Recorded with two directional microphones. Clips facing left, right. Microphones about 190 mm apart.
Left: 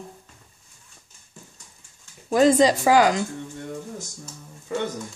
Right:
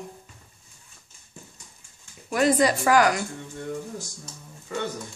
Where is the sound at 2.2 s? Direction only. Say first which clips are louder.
Left 4 dB; 25° left (ahead or behind).